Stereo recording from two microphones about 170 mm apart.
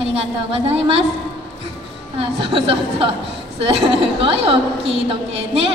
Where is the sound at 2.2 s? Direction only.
30° right (ahead or behind).